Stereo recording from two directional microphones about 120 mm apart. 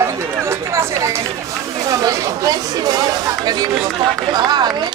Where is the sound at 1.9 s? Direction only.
30° right (ahead or behind).